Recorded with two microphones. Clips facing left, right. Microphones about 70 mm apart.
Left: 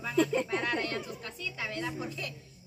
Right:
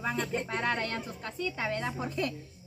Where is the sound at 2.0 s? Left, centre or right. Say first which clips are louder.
Right 5 dB; right.